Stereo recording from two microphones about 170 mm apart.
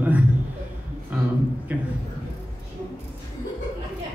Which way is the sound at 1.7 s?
10° right (ahead or behind).